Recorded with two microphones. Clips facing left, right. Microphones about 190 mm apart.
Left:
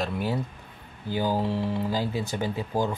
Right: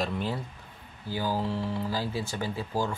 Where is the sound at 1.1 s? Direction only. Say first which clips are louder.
Left 4 dB; 20° left (ahead or behind).